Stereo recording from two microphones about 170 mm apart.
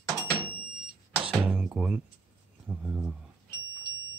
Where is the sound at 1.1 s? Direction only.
10° right (ahead or behind).